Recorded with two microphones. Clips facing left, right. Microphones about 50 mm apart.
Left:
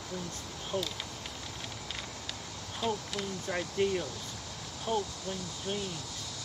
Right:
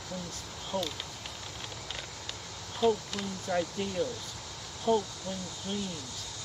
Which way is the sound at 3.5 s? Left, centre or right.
Centre.